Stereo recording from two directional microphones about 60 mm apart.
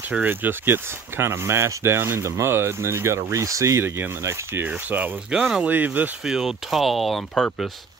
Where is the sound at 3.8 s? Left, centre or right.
Right.